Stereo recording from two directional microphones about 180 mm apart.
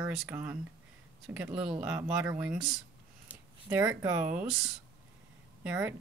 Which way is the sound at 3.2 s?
10° right (ahead or behind).